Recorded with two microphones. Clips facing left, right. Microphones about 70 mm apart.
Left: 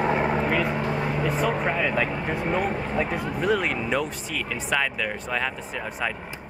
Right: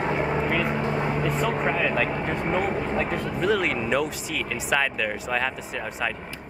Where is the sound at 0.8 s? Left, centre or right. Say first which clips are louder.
Right 1 dB; right.